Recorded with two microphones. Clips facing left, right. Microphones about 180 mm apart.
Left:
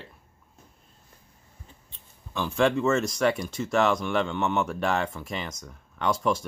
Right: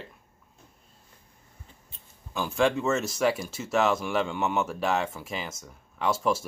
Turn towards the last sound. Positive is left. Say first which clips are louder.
# left 1 dB
turn(degrees=-5)  # may be behind; listen again after turning